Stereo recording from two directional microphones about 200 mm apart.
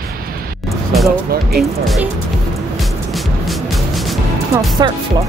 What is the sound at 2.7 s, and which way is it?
Music, centre (ahead or behind).